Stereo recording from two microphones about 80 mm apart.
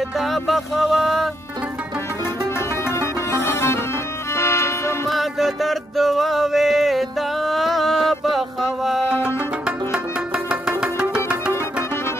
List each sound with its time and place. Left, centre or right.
0.2 s music: centre
2.8 s music: left
5.0 s music: centre
9.7 s music: centre